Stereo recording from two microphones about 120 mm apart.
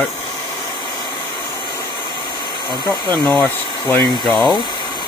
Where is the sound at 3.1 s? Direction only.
15° left (ahead or behind).